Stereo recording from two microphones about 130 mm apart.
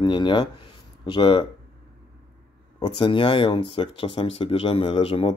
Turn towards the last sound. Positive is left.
turn(degrees=45)  # may be behind; listen again after turning